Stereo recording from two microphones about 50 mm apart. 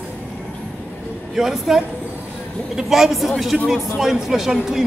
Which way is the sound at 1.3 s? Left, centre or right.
Centre.